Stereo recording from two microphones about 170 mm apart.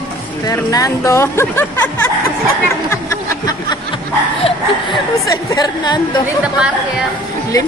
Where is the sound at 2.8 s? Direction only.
20° left (ahead or behind).